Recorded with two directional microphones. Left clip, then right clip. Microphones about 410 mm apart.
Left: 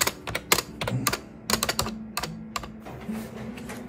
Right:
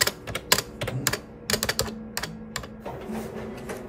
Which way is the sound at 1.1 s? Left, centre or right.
Centre.